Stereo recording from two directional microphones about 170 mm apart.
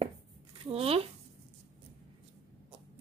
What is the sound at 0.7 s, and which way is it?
Speech, 35° right (ahead or behind).